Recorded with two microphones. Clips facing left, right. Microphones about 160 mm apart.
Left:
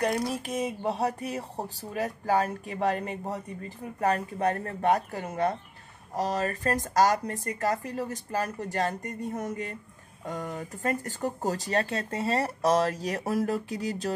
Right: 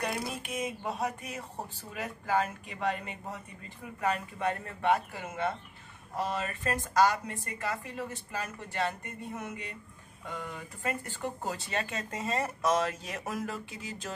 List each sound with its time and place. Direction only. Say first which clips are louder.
0.0 s speech: left 7 dB; 35° left (ahead or behind)